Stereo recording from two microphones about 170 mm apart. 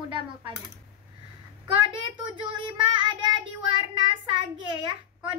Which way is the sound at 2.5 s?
30° right (ahead or behind).